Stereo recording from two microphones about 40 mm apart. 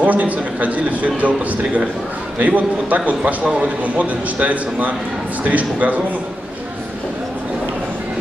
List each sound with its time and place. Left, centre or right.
0.0 s a man's voice: right
3.4 s speech: right
3.8 s a man's voice: right